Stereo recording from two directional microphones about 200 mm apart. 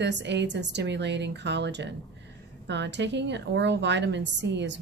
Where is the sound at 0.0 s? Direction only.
60° right (ahead or behind).